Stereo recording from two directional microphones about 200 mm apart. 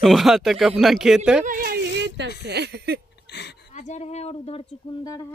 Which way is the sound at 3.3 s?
55° left (ahead or behind).